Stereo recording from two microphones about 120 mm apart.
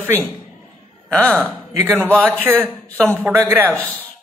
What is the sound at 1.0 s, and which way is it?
Speech, 5° left (ahead or behind).